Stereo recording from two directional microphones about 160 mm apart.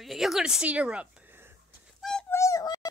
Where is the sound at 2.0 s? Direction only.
5° left (ahead or behind).